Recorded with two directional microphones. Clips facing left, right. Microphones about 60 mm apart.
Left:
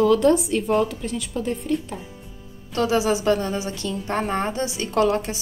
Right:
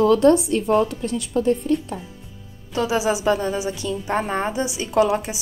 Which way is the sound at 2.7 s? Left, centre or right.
Centre.